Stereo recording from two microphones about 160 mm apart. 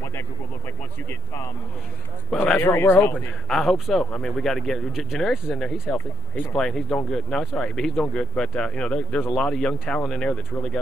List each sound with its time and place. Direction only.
2.3 s speech: 5° left (ahead or behind)
2.7 s speech: 20° left (ahead or behind)
3.2 s speech: centre (ahead or behind)